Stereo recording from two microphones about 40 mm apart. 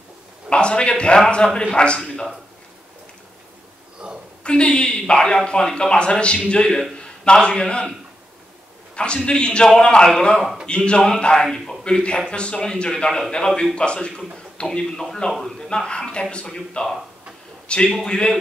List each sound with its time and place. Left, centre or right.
0.5 s a man's voice: left
4.0 s a sound: right
4.4 s a man's voice: left
8.9 s a man's voice: left
10.4 s speech: centre
10.7 s a man's voice: left
11.4 s speech: centre
11.8 s a man's voice: left
12.9 s speech: centre
13.7 s a man's voice: left
16.4 s speech: centre
17.7 s a man's voice: left